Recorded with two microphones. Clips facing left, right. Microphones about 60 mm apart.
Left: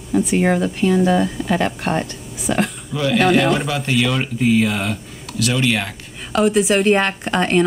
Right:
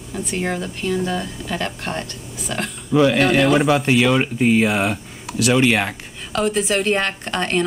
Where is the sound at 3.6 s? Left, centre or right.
Centre.